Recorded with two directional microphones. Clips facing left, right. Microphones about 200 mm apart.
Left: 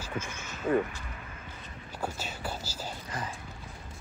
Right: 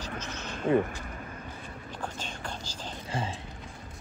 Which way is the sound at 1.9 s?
10° left (ahead or behind).